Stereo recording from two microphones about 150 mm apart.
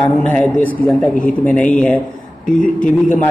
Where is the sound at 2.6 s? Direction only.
60° left (ahead or behind).